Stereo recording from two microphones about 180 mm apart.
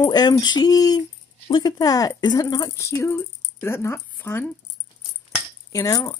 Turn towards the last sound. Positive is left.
turn(degrees=20)  # may be behind; listen again after turning